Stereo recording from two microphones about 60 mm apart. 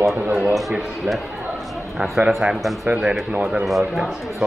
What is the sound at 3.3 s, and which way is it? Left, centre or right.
Speech, centre.